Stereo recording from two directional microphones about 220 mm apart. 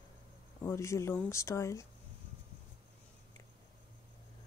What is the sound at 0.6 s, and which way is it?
Speech, 15° left (ahead or behind).